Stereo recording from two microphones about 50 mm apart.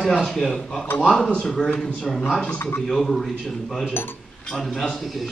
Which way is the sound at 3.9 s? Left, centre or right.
Left.